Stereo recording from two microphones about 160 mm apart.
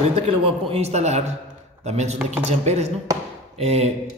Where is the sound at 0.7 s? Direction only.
40° right (ahead or behind).